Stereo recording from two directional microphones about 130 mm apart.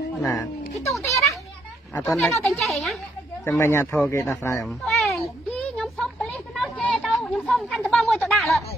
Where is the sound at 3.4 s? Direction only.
20° left (ahead or behind).